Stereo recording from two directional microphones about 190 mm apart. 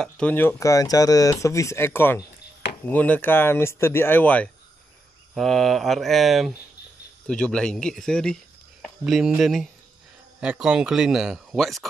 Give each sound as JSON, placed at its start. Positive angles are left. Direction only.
{"t": 0.0, "sound": "speech", "side_deg": 5}